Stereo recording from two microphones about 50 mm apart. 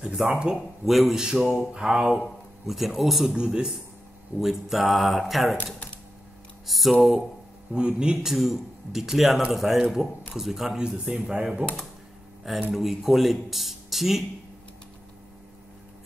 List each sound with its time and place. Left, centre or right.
0.0 s speech: centre
0.6 s speech: centre
3.3 s speech: centre
4.4 s speech: centre
6.6 s speech: centre
7.7 s speech: centre
12.7 s speech: centre